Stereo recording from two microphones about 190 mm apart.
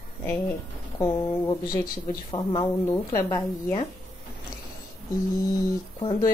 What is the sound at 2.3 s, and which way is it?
A woman's voice, 20° left (ahead or behind).